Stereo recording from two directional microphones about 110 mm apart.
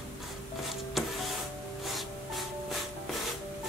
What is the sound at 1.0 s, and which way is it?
Printer, centre (ahead or behind).